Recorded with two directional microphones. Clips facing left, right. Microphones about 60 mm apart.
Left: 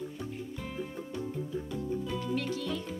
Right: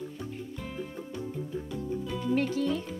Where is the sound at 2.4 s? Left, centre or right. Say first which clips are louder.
Right 6 dB; right.